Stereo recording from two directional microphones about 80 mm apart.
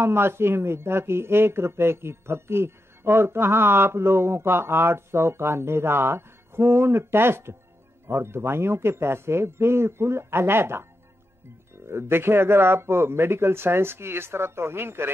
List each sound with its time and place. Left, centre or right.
0.0 s speech: right
11.9 s speech: right